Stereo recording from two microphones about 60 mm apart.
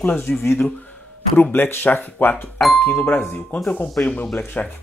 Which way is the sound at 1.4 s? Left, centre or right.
Left.